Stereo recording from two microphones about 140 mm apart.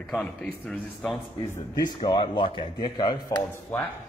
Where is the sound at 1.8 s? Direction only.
30° left (ahead or behind).